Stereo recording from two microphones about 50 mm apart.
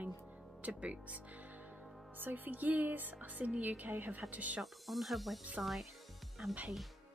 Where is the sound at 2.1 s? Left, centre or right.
Right.